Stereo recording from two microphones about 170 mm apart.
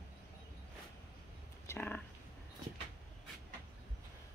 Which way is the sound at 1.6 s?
10° left (ahead or behind).